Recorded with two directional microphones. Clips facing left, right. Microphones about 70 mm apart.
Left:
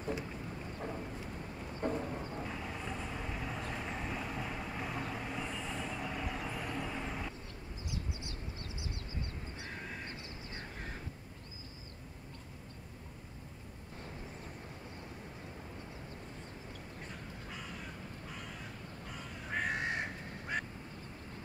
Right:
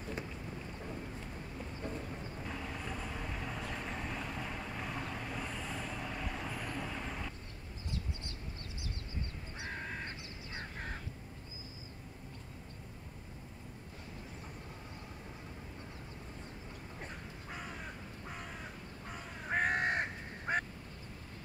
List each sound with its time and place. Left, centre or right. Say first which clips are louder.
1.8 s a sound: left 8 dB; left
2.4 s vehicle: left 1 dB; centre
19.5 s crow: right 4 dB; right
20.5 s quack: right 4 dB; right